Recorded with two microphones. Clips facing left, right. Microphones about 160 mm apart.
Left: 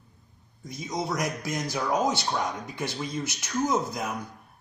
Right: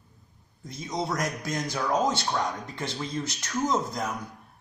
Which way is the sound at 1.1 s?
15° left (ahead or behind).